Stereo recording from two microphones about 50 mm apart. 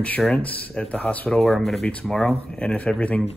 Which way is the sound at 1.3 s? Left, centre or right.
Centre.